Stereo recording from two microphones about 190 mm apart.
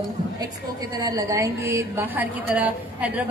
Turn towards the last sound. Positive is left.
turn(degrees=-5)  # may be behind; listen again after turning